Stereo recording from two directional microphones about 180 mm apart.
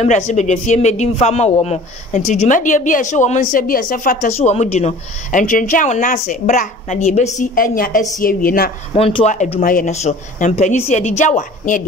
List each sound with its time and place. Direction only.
0.0 s speech: 40° left (ahead or behind)
8.9 s speech: 35° left (ahead or behind)